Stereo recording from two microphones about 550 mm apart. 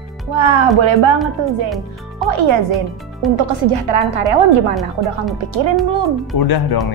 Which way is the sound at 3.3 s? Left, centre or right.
Right.